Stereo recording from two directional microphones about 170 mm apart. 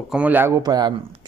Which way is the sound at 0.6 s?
25° right (ahead or behind).